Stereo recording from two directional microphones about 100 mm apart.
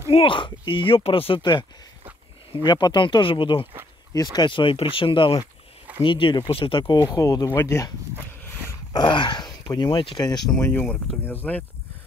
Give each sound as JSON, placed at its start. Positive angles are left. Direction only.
{"t": 0.1, "sound": "speech", "side_deg": 60}
{"t": 4.1, "sound": "speech", "side_deg": 40}
{"t": 6.8, "sound": "speech", "side_deg": 40}
{"t": 8.9, "sound": "speech", "side_deg": 50}
{"t": 10.6, "sound": "speech", "side_deg": 20}